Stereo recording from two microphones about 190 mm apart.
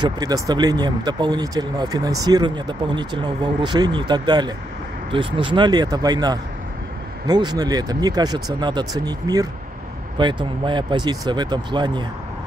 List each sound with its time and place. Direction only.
0.0 s speech: 20° right (ahead or behind)